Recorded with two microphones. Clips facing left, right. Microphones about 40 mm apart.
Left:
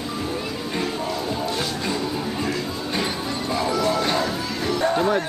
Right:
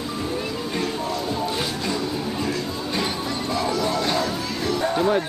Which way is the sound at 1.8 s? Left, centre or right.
Centre.